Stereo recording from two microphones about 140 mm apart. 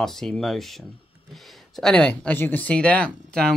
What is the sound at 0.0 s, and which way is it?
Speech, centre (ahead or behind).